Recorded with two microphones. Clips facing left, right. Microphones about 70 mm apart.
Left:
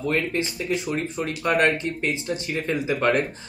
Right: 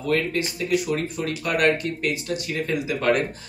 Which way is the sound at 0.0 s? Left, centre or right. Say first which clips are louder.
Right 1 dB; left.